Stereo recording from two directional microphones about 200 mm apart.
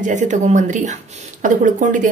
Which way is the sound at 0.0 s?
40° right (ahead or behind).